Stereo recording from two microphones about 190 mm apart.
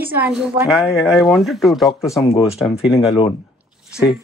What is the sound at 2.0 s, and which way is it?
Speech, 15° left (ahead or behind).